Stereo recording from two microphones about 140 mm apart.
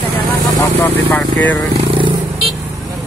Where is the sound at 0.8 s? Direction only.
10° left (ahead or behind).